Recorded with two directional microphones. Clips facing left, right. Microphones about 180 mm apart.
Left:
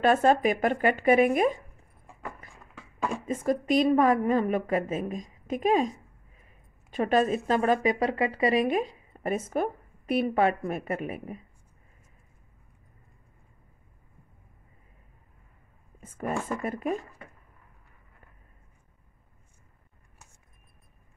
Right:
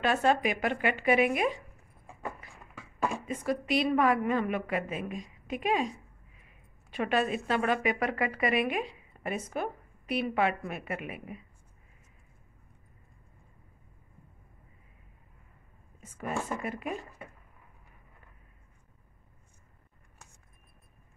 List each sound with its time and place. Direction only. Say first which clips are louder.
0.0 s a woman's voice: left 5 dB; 45° left (ahead or behind)
3.3 s a woman's voice: left 9 dB; 45° left (ahead or behind)
16.0 s a sound: left 5 dB; 50° left (ahead or behind)
16.6 s a woman's voice: left 5 dB; 45° left (ahead or behind)